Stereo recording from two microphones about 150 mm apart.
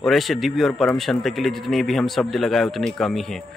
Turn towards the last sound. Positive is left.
turn(degrees=0)  # may be behind; listen again after turning